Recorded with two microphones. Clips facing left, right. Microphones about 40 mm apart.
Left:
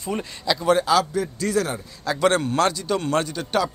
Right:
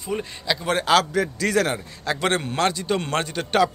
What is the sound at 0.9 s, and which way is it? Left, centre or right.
Speech, right.